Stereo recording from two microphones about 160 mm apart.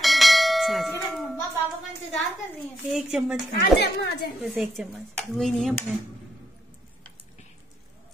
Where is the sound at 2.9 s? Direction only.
5° right (ahead or behind).